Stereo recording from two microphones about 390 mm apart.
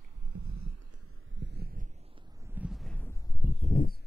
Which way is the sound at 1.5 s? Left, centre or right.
Right.